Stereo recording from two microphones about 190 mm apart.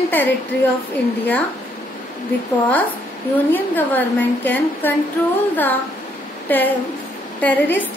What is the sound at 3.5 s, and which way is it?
A woman's voice, 10° left (ahead or behind).